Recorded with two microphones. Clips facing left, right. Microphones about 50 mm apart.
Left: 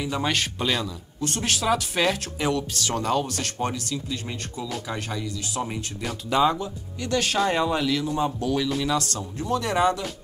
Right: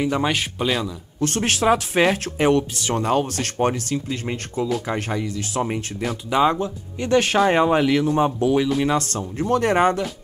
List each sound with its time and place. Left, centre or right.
0.2 s speech: centre
1.2 s speech: right
2.7 s speech: right
8.4 s speech: right